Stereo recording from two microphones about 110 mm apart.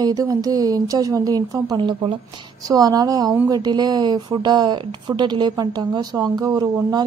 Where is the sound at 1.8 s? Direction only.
50° right (ahead or behind).